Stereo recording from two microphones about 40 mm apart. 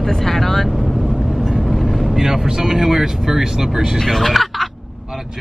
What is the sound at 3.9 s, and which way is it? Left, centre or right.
Speech, centre.